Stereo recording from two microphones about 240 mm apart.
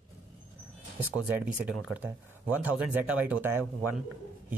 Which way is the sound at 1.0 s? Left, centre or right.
Centre.